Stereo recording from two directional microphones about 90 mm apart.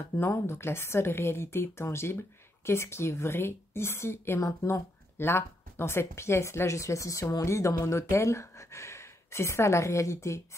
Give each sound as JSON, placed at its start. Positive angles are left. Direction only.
{"t": 0.1, "sound": "speech", "side_deg": 30}